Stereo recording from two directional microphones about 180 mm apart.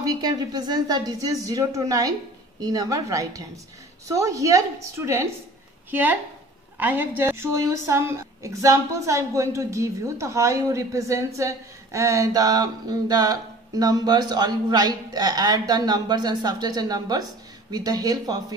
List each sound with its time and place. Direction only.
0.0 s a woman's voice: 20° right (ahead or behind)